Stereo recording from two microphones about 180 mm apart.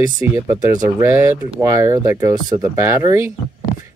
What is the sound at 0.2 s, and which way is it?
Speech, 10° right (ahead or behind).